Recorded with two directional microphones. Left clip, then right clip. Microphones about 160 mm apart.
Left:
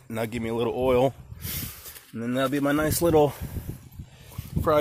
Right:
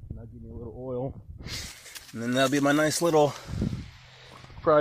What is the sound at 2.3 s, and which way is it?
Speech, 10° right (ahead or behind).